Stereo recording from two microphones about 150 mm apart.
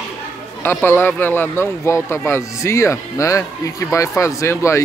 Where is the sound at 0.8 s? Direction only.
15° left (ahead or behind).